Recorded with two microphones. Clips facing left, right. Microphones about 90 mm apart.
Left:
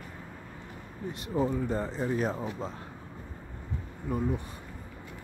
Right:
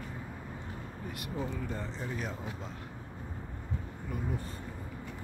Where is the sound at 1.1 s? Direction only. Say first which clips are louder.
Left 9 dB; 35° left (ahead or behind).